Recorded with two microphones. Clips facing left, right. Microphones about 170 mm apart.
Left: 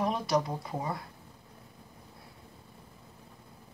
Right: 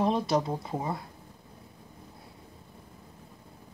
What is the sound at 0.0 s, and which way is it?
Speech, 25° right (ahead or behind).